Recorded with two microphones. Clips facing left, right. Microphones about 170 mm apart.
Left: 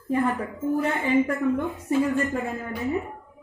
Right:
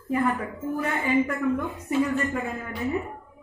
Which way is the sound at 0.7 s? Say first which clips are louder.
Left 1 dB; 30° left (ahead or behind).